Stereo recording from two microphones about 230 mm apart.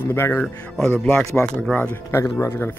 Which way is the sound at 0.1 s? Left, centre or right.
Centre.